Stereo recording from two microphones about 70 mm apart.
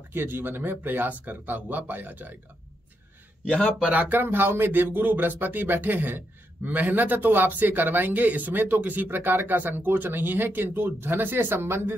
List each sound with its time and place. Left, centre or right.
0.1 s speech: right
3.8 s speech: right